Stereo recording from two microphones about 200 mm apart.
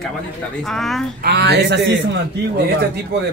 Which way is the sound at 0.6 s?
Centre (ahead or behind).